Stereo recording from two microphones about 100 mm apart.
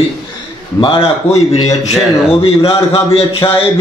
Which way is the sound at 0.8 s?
55° left (ahead or behind).